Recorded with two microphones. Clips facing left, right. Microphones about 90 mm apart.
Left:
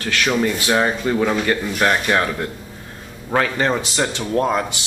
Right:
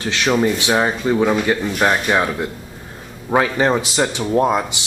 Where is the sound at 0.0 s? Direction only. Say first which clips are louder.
Right 2 dB; 20° right (ahead or behind).